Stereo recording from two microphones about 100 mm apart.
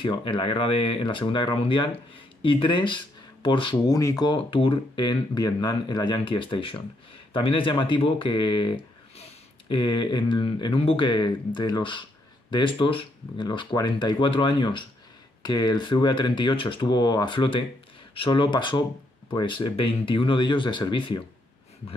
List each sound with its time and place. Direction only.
0.0 s speech: 55° left (ahead or behind)
3.8 s speech: 40° left (ahead or behind)
4.5 s speech: 60° left (ahead or behind)
9.8 s speech: 50° left (ahead or behind)
11.1 s speech: 50° left (ahead or behind)
15.4 s speech: 45° left (ahead or behind)